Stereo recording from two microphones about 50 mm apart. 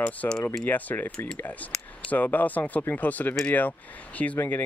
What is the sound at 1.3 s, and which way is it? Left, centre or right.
Speech, left.